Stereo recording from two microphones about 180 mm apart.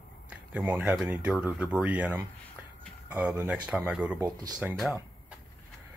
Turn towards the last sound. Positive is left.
turn(degrees=0)  # may be behind; listen again after turning